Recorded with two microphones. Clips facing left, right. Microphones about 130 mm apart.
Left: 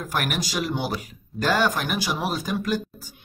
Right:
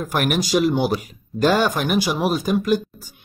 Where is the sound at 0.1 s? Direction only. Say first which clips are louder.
Right 8 dB; 20° right (ahead or behind).